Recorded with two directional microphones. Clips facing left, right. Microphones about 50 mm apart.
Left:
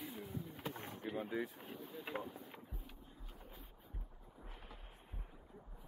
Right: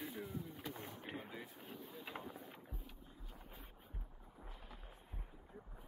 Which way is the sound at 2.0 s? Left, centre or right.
Centre.